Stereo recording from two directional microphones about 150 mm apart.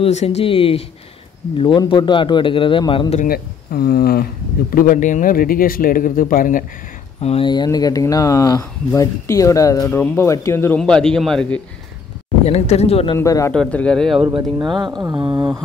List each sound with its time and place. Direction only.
0.0 s a man's voice: 45° left (ahead or behind)
3.3 s speech: 90° left; by 6.6 s 65° left (ahead or behind)
7.2 s speech: 40° left (ahead or behind); by 10.8 s 15° left (ahead or behind)
10.8 s a man's voice: 5° left (ahead or behind)
12.4 s speech: 45° left (ahead or behind)
13.2 s speech: 20° left (ahead or behind)
13.5 s a man's voice: 5° left (ahead or behind)
14.6 s speech: 30° right (ahead or behind)
15.1 s a sound: 10° right (ahead or behind)